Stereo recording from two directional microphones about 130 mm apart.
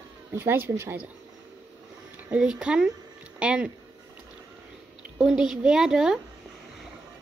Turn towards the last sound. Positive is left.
turn(degrees=-5)  # may be behind; listen again after turning